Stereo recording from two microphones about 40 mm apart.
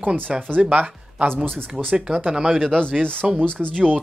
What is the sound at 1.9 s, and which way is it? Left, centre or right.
Speech, centre.